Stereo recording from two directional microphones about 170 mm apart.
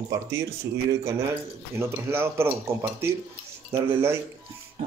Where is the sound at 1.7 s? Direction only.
15° right (ahead or behind).